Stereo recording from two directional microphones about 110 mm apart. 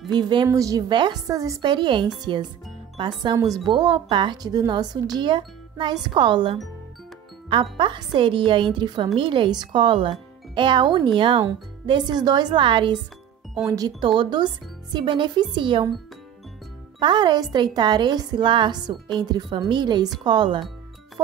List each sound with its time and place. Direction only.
0.1 s a woman's voice: 45° right (ahead or behind)
0.5 s speech: 30° right (ahead or behind)
1.2 s speech: 30° right (ahead or behind)
1.7 s a woman's voice: 45° right (ahead or behind)
3.6 s a woman's voice: 40° right (ahead or behind)
7.7 s a woman's voice: 50° right (ahead or behind)
13.7 s a woman's voice: 35° right (ahead or behind)
17.0 s a woman's voice: 45° right (ahead or behind)